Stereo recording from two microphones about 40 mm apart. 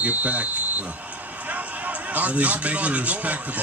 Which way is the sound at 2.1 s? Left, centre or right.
Right.